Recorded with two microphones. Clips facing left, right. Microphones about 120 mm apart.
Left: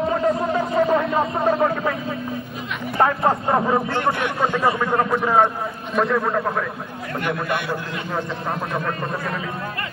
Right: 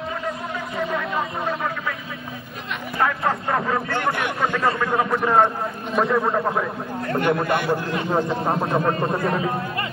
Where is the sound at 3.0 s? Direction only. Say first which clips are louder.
Left 4 dB; 30° left (ahead or behind).